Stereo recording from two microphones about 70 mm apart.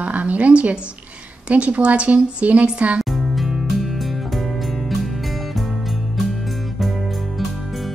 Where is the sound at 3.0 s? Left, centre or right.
Centre.